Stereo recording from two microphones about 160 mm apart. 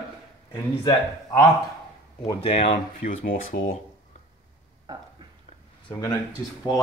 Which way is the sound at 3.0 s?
55° left (ahead or behind).